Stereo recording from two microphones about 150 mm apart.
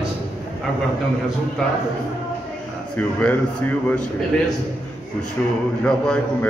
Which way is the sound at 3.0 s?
10° left (ahead or behind).